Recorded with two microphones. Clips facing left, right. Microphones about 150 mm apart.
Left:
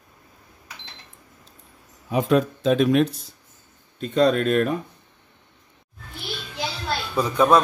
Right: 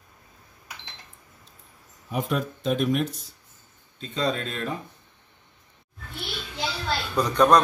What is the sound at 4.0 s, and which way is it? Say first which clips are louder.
Speech: left 8 dB; 60° left (ahead or behind).